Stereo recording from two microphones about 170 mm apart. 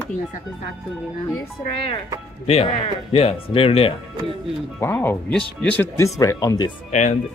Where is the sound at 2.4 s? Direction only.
35° left (ahead or behind).